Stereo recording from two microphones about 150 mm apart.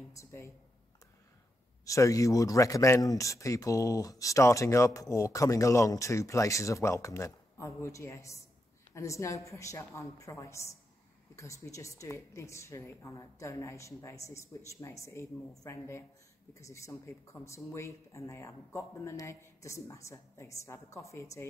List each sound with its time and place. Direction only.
0.1 s speech: 20° left (ahead or behind)
1.9 s speech: 20° left (ahead or behind)